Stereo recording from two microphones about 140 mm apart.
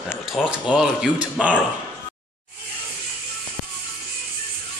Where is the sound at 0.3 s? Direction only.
5° right (ahead or behind).